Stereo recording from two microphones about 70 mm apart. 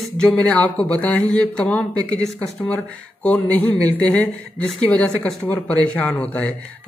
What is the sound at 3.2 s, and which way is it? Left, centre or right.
A man's voice, centre.